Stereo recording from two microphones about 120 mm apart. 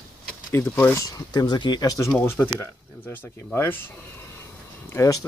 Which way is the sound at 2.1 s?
20° left (ahead or behind).